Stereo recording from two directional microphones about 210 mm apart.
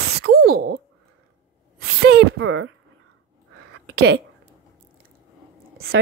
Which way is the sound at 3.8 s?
60° right (ahead or behind).